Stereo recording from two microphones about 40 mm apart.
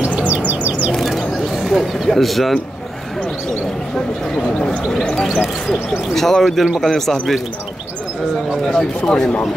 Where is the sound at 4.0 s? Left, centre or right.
Centre.